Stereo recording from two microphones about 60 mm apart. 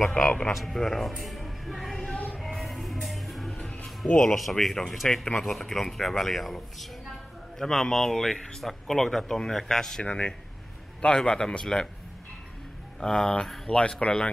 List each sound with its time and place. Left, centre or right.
0.0 s speech: centre
0.5 s speech: centre
2.1 s music: left
2.4 s music: centre
4.1 s speech: centre
4.4 s speech: centre
13.0 s speech: centre